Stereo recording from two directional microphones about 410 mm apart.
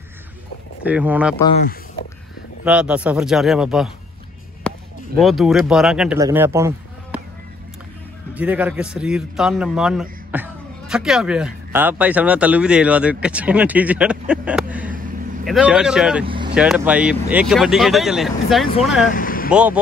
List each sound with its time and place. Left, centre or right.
0.8 s a man's voice: centre
2.6 s a man's voice: centre
4.7 s a sound: centre
5.2 s a man's voice: centre
8.4 s a man's voice: centre
19.0 s vehicle: centre
19.5 s a man's voice: centre